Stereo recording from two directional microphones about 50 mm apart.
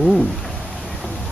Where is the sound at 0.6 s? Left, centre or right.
Centre.